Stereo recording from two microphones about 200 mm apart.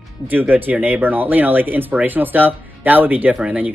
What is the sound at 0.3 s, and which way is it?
Speech, 10° right (ahead or behind).